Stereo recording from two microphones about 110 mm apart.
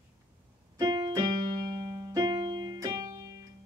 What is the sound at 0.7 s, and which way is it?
Keyboard, 40° right (ahead or behind).